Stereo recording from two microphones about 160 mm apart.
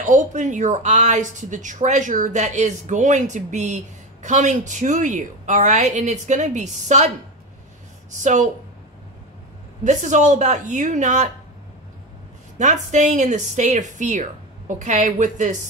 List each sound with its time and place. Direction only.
0.0 s speech: 50° right (ahead or behind)
8.1 s speech: 50° right (ahead or behind)
9.8 s speech: 50° right (ahead or behind)
12.5 s speech: 50° right (ahead or behind)